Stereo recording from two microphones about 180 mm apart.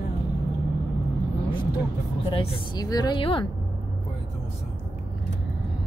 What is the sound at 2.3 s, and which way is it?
A woman's voice, 25° left (ahead or behind).